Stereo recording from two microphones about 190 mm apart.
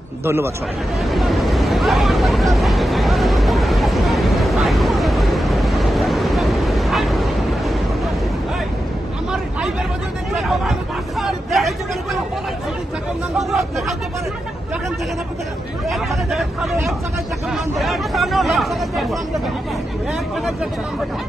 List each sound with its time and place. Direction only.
0.2 s speech: 15° right (ahead or behind)
0.9 s vehicle: centre (ahead or behind)
10.3 s chatter: centre (ahead or behind)
13.4 s speech: centre (ahead or behind)
15.9 s speech: centre (ahead or behind)
17.5 s speech: centre (ahead or behind)